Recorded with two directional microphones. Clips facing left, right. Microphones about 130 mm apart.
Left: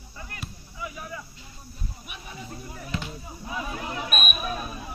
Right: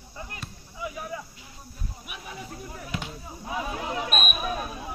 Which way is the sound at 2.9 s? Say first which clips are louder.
Left 2 dB; 15° right (ahead or behind).